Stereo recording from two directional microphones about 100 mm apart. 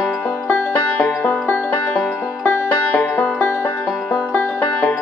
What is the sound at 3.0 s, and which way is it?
Music, 20° left (ahead or behind).